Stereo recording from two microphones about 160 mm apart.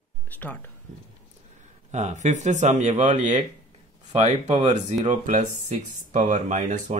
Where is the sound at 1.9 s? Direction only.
50° right (ahead or behind).